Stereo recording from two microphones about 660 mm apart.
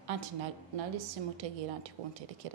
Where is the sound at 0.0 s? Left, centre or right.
Right.